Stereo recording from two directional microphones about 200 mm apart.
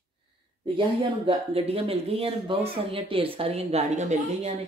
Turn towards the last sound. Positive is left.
turn(degrees=-35)  # may be behind; listen again after turning